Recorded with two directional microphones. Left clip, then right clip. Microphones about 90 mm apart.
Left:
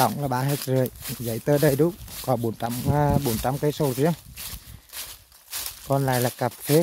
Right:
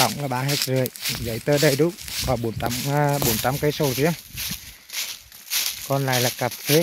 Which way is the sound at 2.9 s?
20° left (ahead or behind).